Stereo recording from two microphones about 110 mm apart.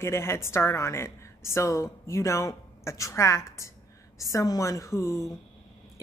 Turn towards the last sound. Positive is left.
turn(degrees=30)  # may be behind; listen again after turning